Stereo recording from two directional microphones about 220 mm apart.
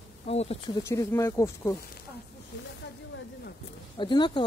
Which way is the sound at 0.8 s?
15° left (ahead or behind).